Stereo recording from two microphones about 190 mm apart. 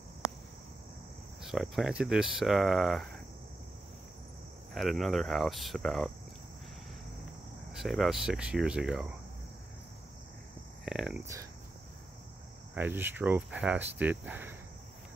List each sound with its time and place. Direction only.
1.4 s speech: centre (ahead or behind)
4.7 s speech: centre (ahead or behind)
7.7 s speech: centre (ahead or behind)
10.9 s speech: 5° right (ahead or behind)
12.7 s speech: 10° right (ahead or behind)